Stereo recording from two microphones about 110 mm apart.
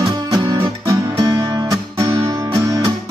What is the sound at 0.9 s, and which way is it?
Music, 30° right (ahead or behind).